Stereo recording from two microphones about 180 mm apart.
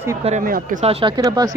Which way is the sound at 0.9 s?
30° right (ahead or behind).